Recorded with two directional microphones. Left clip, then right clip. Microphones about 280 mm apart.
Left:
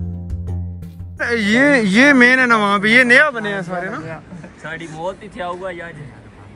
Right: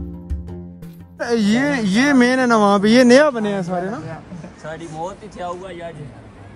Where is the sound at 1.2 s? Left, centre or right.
Centre.